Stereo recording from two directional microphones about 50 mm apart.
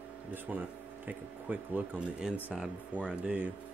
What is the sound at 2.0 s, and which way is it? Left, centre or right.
Speech, centre.